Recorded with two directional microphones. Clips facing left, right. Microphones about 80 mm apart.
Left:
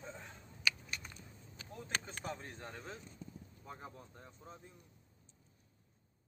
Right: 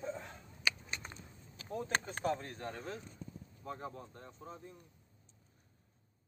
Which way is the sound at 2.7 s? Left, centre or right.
Right.